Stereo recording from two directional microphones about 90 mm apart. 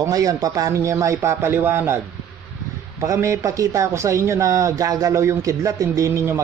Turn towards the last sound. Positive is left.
turn(degrees=-30)  # may be behind; listen again after turning